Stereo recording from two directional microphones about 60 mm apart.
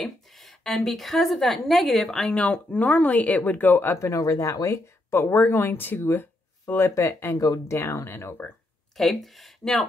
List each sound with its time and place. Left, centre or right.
0.0 s a woman's voice: centre
2.3 s speech: left
4.0 s speech: left
5.1 s speech: left
7.0 s speech: left
7.7 s speech: left
8.9 s speech: centre